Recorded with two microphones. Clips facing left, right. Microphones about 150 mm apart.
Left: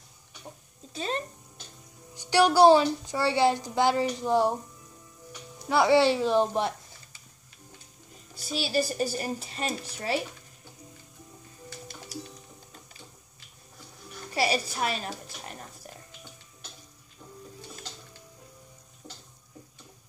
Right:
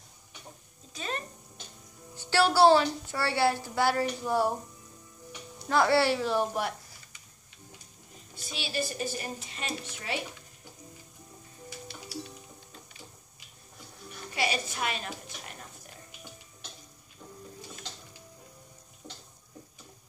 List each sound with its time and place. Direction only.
0.9 s speech: 30° left (ahead or behind)
2.1 s a woman's voice: 15° left (ahead or behind)
5.7 s speech: 15° left (ahead or behind)
8.4 s a woman's voice: 40° left (ahead or behind)
14.3 s a woman's voice: 35° left (ahead or behind)
19.0 s a sound: 5° left (ahead or behind)